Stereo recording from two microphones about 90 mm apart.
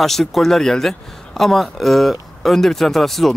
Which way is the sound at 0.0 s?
5° left (ahead or behind).